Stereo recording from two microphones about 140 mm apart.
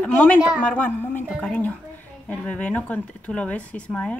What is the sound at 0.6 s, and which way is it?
A woman's voice, 10° left (ahead or behind).